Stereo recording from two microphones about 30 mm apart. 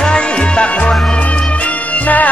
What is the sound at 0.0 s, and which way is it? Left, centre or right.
Music, left.